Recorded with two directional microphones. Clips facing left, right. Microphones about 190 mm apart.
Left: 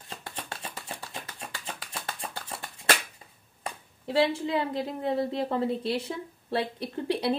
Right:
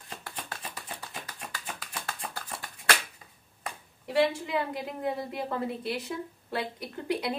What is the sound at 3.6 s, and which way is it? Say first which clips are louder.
A woman's voice: left 3 dB; 25° left (ahead or behind).